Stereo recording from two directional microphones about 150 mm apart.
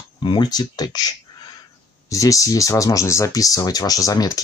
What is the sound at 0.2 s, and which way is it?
Speech, 30° left (ahead or behind).